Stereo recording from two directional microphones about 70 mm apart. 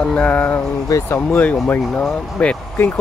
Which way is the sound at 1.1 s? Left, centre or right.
Left.